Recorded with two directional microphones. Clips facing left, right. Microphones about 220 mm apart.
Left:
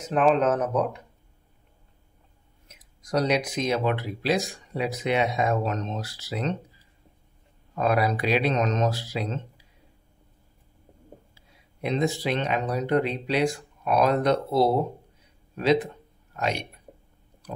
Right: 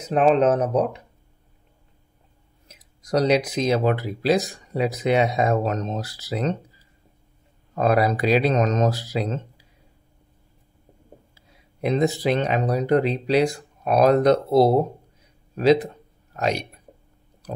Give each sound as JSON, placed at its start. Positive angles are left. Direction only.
{"t": 0.1, "sound": "speech", "side_deg": -35}
{"t": 2.7, "sound": "speech", "side_deg": -35}
{"t": 7.7, "sound": "speech", "side_deg": -40}
{"t": 11.8, "sound": "speech", "side_deg": -45}